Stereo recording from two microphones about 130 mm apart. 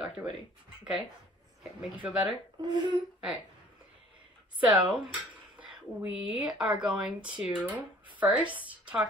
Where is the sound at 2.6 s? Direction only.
35° right (ahead or behind).